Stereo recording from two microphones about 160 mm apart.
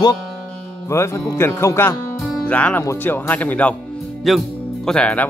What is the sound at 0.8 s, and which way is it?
Speech, 15° left (ahead or behind).